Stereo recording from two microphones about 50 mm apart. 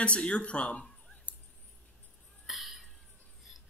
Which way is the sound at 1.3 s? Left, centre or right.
Left.